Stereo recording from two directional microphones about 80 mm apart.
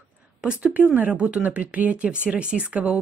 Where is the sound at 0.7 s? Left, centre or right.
Right.